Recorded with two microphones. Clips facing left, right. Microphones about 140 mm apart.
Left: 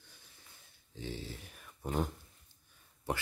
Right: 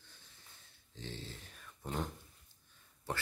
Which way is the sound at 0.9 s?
10° left (ahead or behind).